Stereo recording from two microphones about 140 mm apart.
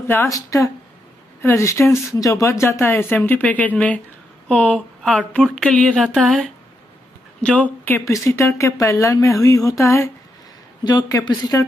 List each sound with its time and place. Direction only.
0.0 s speech: 15° left (ahead or behind)